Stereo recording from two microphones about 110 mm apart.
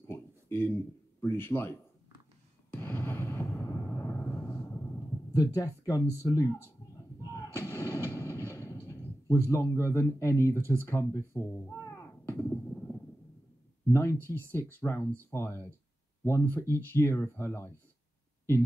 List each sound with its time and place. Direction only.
0.1 s a sound: 20° left (ahead or behind)
1.2 s speech: 20° left (ahead or behind)
2.7 s a sound: 20° left (ahead or behind)
3.6 s vehicle: 25° left (ahead or behind)
5.5 s speech: 30° left (ahead or behind)
6.2 s artillery fire: 30° left (ahead or behind)
14.1 s speech: 20° left (ahead or behind)